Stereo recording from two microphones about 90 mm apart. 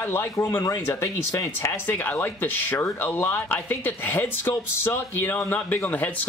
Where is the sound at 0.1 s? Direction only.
25° left (ahead or behind).